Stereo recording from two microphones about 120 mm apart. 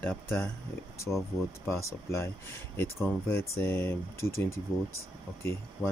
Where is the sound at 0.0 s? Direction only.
20° left (ahead or behind).